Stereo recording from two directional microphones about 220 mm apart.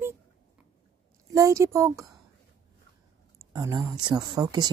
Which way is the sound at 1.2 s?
15° right (ahead or behind).